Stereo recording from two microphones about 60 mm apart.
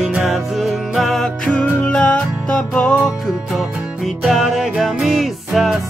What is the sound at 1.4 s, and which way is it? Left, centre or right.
Music, left.